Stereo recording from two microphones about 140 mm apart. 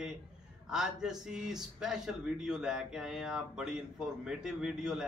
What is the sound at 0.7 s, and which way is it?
Speech, 5° right (ahead or behind).